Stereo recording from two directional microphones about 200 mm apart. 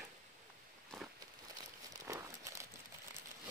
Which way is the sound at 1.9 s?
15° right (ahead or behind).